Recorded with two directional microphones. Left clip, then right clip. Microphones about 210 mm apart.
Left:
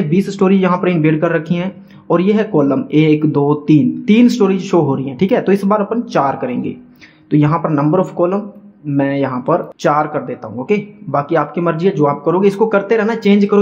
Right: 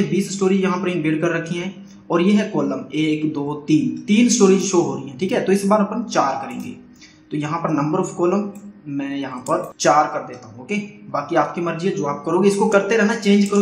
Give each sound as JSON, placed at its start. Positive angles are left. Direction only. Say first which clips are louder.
{"t": 0.1, "sound": "speech", "louder": "left 5 dB", "side_deg": 50}